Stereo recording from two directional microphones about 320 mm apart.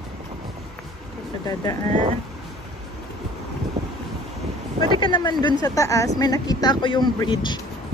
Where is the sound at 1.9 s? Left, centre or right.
Right.